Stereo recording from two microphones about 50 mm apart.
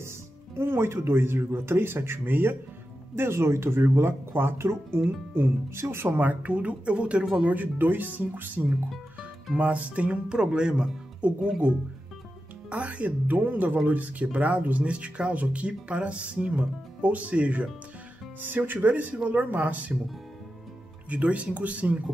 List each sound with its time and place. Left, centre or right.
0.6 s speech: right
3.2 s speech: right
4.9 s speech: right
5.4 s speech: right
6.2 s speech: right
10.2 s speech: centre
12.6 s speech: right
18.4 s speech: right
21.1 s speech: right